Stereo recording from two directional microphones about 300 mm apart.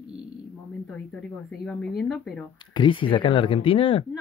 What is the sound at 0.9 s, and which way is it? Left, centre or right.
Speech, centre.